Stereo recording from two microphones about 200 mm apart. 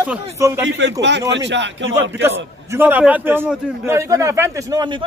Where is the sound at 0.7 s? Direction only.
65° right (ahead or behind).